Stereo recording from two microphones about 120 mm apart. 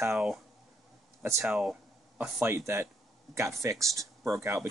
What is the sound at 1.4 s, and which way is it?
Speech, 5° right (ahead or behind).